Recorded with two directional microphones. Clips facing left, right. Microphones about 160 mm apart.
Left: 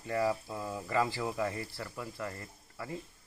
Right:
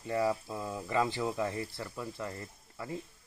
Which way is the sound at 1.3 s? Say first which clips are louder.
Right 1 dB; 5° right (ahead or behind).